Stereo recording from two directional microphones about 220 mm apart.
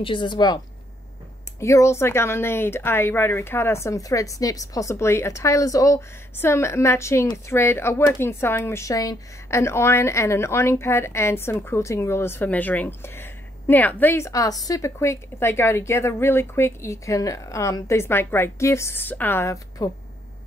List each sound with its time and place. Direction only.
0.0 s speech: 20° left (ahead or behind)
1.6 s speech: 15° left (ahead or behind)